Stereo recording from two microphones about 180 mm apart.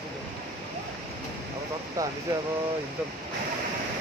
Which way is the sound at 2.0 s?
20° right (ahead or behind).